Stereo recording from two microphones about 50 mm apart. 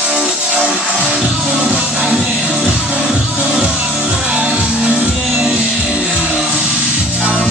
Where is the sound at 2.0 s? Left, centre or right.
Centre.